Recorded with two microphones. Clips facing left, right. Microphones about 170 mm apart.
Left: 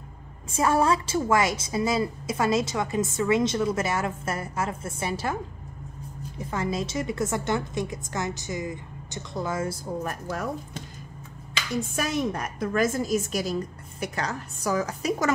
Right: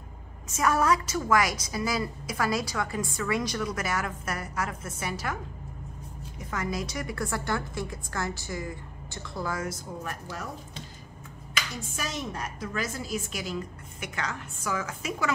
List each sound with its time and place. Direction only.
0.5 s a woman's voice: 30° left (ahead or behind)
6.4 s a woman's voice: 30° left (ahead or behind)
10.0 s a woman's voice: 50° left (ahead or behind)
11.8 s a woman's voice: 55° left (ahead or behind); by 15.3 s 40° left (ahead or behind)